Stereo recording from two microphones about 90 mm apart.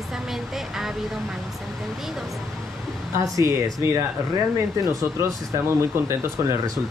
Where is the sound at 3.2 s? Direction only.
40° right (ahead or behind).